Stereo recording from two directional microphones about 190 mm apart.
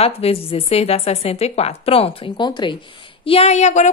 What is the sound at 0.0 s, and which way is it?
A woman's voice, 30° left (ahead or behind).